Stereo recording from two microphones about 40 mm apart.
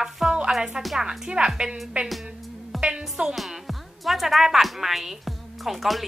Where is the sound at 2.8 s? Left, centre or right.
Right.